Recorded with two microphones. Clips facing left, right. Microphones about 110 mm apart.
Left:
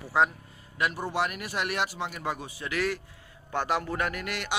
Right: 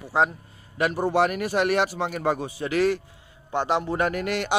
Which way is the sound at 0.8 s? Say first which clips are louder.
Right 7 dB; 35° right (ahead or behind).